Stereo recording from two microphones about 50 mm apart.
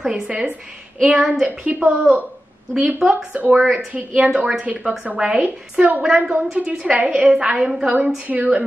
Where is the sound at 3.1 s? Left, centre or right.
Right.